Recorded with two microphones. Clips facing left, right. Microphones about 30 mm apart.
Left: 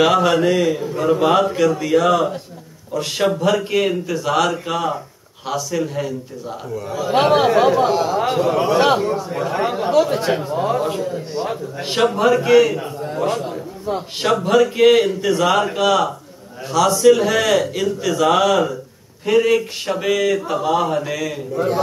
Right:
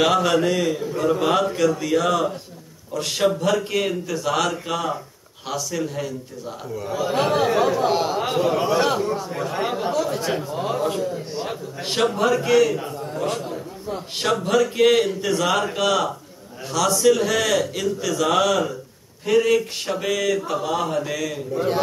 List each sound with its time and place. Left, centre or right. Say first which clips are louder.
0.0 s speech: left 4 dB; centre
7.2 s speech: left 6 dB; left
7.9 s a man's voice: left 3 dB; centre
8.5 s speech: left 4 dB; centre
8.8 s a man's voice: left 5 dB; left
9.3 s speech: left 4 dB; centre
10.0 s a man's voice: left 5 dB; left
10.7 s speech: left 3 dB; centre